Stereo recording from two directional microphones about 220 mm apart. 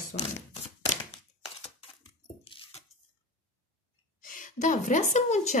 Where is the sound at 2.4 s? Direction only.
25° left (ahead or behind).